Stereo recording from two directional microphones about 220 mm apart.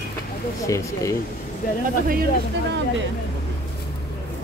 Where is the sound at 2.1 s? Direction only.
40° right (ahead or behind).